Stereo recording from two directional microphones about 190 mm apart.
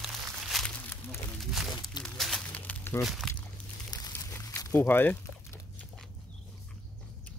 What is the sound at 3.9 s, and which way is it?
Crumpling, 20° left (ahead or behind).